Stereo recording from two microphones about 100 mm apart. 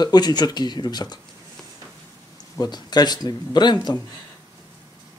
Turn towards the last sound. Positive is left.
turn(degrees=40)  # may be behind; listen again after turning